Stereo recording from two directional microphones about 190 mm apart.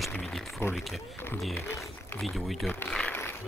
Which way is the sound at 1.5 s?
10° left (ahead or behind).